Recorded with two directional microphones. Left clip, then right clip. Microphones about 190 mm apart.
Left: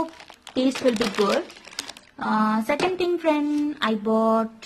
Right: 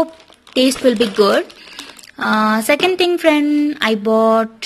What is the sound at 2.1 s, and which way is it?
A woman's voice, 20° right (ahead or behind).